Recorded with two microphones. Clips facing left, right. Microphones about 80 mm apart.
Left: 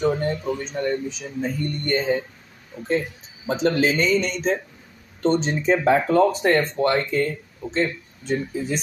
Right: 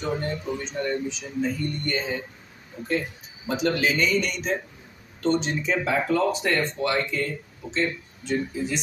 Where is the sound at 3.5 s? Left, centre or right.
Left.